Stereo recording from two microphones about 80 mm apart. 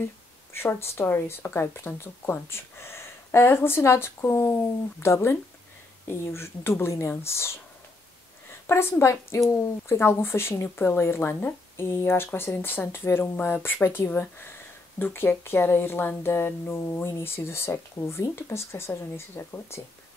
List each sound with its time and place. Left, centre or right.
0.5 s speech: left
8.6 s speech: left